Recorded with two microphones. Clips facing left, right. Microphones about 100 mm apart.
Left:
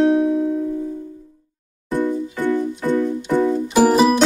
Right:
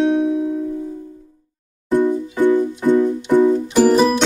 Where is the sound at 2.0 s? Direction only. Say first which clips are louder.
Right 4 dB; 20° right (ahead or behind).